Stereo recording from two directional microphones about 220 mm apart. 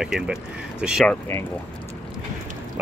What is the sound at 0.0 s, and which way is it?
Speech, centre (ahead or behind).